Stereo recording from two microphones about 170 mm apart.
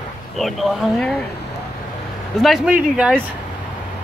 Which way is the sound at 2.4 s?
5° right (ahead or behind).